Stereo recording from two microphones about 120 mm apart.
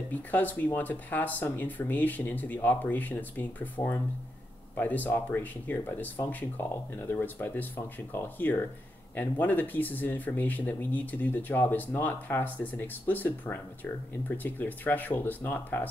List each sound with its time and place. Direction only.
0.1 s speech: 15° left (ahead or behind)